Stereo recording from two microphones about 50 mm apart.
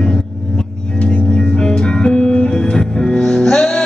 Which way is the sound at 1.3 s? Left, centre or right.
Centre.